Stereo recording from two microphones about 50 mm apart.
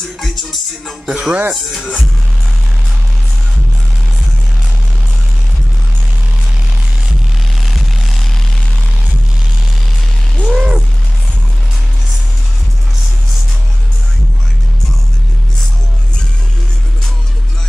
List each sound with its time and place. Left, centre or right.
0.2 s music: centre
1.0 s speech: right
1.5 s speech: centre
7.6 s vehicle: centre
10.4 s a sound: centre